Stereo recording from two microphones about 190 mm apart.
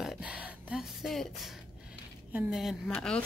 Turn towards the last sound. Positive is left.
turn(degrees=5)  # may be behind; listen again after turning